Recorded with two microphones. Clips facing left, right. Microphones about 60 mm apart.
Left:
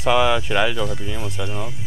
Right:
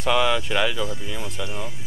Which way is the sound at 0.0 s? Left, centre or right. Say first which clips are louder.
Left 3 dB; centre.